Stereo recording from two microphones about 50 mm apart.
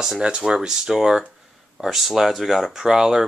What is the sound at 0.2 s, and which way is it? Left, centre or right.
Speech, centre.